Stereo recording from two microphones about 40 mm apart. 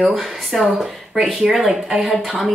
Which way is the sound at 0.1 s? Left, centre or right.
Centre.